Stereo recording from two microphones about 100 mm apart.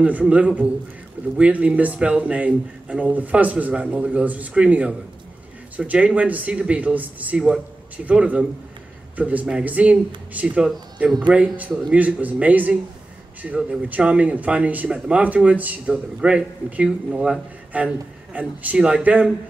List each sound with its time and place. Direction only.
0.0 s speech: 15° right (ahead or behind)